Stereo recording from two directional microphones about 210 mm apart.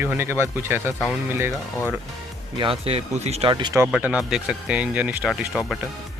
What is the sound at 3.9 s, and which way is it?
Speech, 5° right (ahead or behind).